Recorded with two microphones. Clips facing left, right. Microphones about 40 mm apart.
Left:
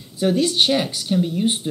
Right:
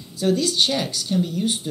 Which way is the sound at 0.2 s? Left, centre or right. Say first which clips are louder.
Left 2 dB; left.